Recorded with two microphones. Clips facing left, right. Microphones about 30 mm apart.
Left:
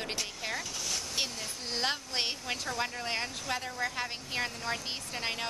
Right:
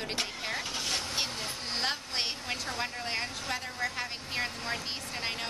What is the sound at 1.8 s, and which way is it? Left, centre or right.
A woman's voice, centre.